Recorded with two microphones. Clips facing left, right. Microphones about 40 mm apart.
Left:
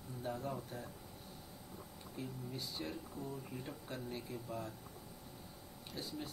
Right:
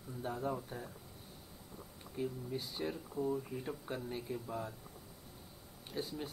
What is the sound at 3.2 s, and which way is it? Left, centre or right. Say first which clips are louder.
Speech: right 13 dB; left.